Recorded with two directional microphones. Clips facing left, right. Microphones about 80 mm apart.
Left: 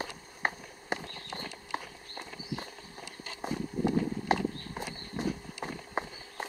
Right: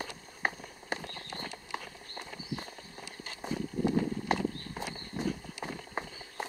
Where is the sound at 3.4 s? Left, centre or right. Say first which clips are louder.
Left 1 dB; centre.